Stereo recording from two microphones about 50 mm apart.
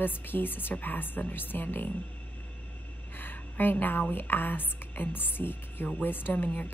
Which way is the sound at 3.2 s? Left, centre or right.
Left.